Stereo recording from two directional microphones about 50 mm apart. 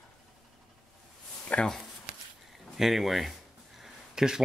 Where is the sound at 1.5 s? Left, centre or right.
Left.